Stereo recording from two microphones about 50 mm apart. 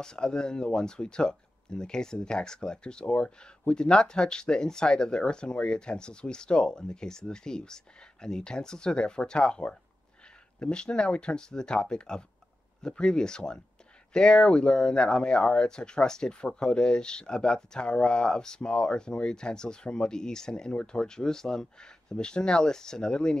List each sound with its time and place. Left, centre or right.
0.0 s speech: centre